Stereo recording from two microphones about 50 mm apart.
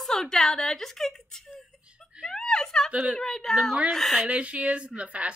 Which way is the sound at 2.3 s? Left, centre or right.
Centre.